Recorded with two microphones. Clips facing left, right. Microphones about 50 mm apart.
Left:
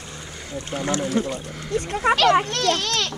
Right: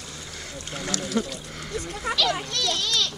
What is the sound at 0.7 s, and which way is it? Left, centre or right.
Speech, left.